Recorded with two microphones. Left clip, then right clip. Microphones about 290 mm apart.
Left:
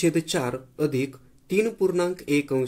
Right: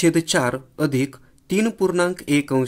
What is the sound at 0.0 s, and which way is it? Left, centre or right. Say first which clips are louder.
Speech: right 6 dB; right.